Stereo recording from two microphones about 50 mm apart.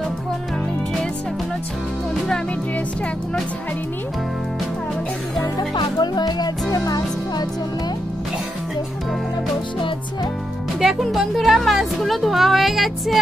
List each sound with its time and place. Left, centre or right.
10.8 s music: centre